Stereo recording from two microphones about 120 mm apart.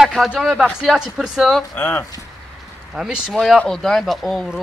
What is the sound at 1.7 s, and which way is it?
Speech, 15° left (ahead or behind).